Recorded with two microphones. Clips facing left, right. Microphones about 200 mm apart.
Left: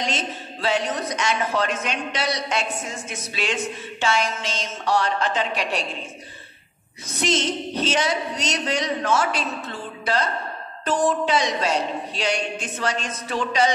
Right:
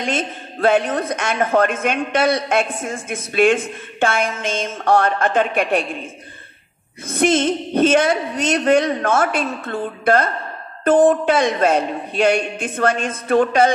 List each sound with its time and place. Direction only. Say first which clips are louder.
0.0 s a man's voice: right 5 dB; 55° right (ahead or behind)
7.1 s a man's voice: right 7 dB; 55° right (ahead or behind)